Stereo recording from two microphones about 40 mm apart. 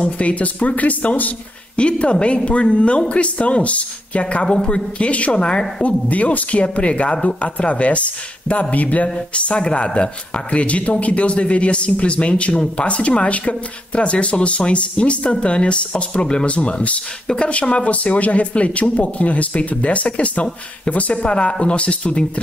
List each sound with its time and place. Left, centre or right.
0.0 s speech: left
1.8 s speech: left
4.5 s speech: left
9.5 s speech: left